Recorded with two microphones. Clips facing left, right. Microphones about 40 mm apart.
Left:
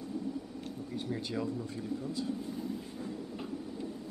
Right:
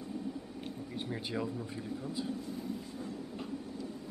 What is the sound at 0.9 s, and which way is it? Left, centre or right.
Speech, centre.